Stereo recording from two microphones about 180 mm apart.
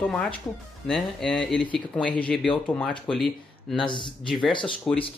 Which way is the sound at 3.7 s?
25° left (ahead or behind).